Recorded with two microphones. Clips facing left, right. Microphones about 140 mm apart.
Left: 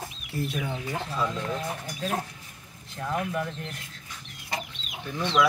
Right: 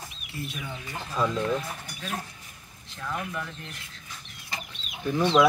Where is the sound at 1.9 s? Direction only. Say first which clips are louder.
Left 5 dB; 40° left (ahead or behind).